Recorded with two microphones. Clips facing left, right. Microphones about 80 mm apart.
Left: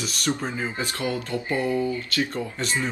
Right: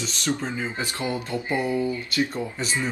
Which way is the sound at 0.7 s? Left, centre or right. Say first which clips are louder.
Even; centre.